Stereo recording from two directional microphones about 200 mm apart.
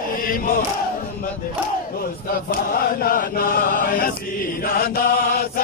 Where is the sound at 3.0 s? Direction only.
45° left (ahead or behind).